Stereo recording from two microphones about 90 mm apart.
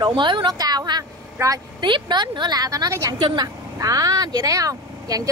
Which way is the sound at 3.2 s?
50° right (ahead or behind).